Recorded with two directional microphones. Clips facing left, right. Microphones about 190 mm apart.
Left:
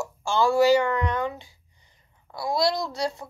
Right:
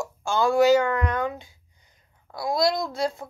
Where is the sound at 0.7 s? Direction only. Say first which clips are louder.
Right 1 dB; 45° right (ahead or behind).